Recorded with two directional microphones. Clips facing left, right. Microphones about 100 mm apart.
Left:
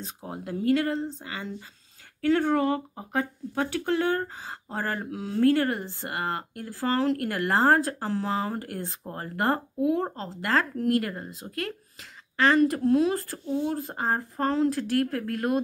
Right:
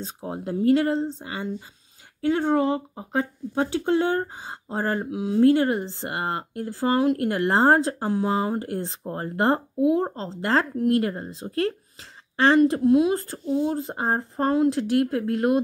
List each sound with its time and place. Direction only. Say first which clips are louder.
0.0 s speech: right 5 dB; 25° right (ahead or behind)